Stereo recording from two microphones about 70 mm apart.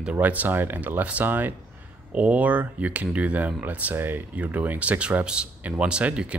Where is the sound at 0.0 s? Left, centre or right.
Right.